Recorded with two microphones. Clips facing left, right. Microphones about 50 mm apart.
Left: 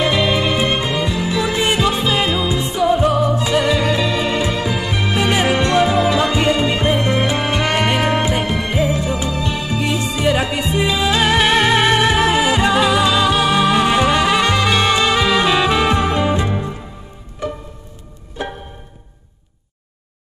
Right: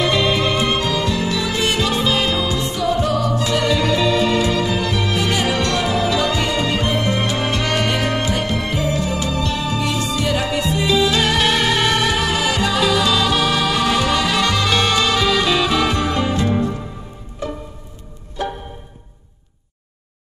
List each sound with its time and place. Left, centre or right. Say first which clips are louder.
0.0 s music: left 1 dB; centre